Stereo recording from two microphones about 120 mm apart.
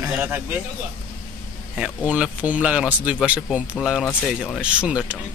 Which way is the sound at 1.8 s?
10° right (ahead or behind).